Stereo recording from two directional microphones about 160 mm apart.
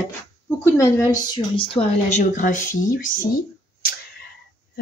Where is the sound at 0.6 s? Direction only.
20° left (ahead or behind).